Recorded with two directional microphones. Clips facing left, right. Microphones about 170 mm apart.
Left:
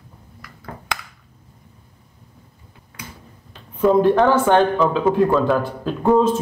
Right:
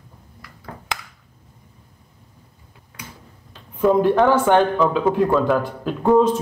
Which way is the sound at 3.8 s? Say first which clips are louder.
Left 1 dB; 10° right (ahead or behind).